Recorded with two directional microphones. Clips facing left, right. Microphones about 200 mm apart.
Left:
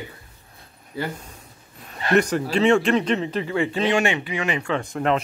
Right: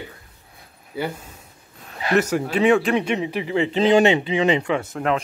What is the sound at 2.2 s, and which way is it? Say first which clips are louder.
Speech: even; 5° right (ahead or behind).